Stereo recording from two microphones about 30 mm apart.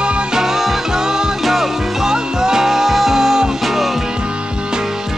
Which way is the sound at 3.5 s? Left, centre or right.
Centre.